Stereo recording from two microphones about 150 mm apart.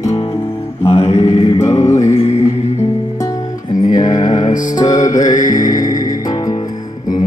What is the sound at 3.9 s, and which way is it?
Mantra, 25° left (ahead or behind).